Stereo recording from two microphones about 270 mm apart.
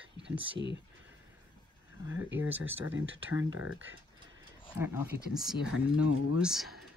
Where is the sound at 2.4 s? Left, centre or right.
Centre.